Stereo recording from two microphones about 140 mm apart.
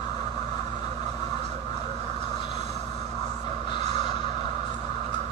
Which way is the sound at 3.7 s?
35° left (ahead or behind).